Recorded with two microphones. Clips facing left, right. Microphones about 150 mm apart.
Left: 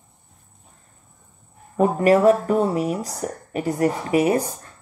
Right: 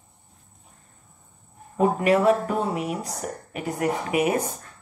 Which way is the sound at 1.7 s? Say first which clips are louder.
Left 3 dB; 40° left (ahead or behind).